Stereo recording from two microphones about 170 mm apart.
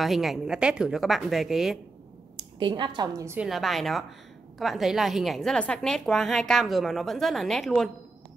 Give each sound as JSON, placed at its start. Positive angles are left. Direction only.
{"t": 0.0, "sound": "a woman's voice", "side_deg": 0}
{"t": 2.3, "sound": "a woman's voice", "side_deg": -30}
{"t": 3.3, "sound": "a woman's voice", "side_deg": 0}